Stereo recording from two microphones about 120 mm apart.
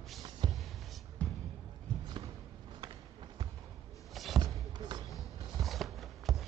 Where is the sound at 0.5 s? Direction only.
Centre (ahead or behind).